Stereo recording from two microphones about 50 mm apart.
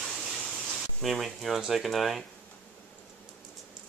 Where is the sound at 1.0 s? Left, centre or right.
Centre.